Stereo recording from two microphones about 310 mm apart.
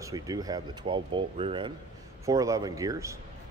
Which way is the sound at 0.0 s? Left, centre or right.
Centre.